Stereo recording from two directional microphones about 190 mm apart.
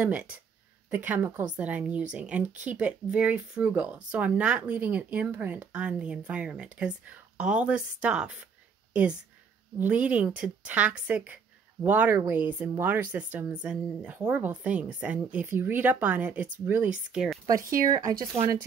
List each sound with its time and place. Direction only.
0.0 s a woman's voice: 5° right (ahead or behind)
9.8 s a woman's voice: 10° right (ahead or behind)
17.6 s speech: 50° right (ahead or behind)
18.2 s a woman's voice: 15° right (ahead or behind)